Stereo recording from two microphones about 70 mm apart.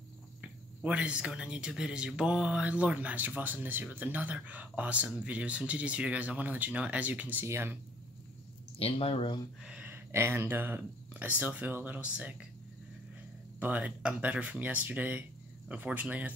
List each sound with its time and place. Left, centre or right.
0.4 s speech: centre
7.4 s speech: right
9.6 s a sound: centre
9.8 s speech: right; by 12.4 s centre
13.6 s speech: right